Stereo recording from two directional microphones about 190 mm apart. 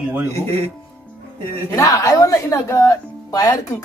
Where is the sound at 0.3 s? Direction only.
35° right (ahead or behind).